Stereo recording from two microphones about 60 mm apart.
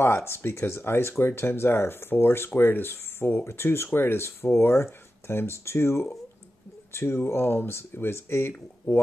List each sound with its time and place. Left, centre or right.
0.0 s speech: left